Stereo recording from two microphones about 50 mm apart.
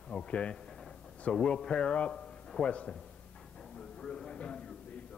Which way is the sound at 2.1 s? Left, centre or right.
Centre.